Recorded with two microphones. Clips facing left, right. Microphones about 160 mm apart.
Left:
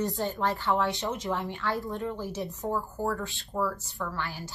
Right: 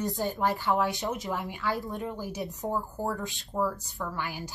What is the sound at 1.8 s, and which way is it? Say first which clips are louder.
Speech: left 2 dB; 20° right (ahead or behind).